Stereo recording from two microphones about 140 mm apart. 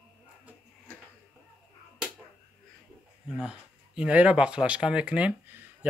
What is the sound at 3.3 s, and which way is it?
Speech, 5° right (ahead or behind).